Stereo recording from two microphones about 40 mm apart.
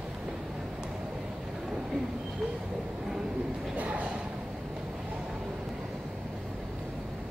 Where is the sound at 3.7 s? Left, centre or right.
Right.